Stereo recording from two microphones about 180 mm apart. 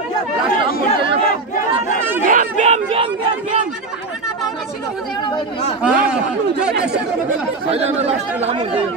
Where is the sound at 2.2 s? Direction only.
45° right (ahead or behind).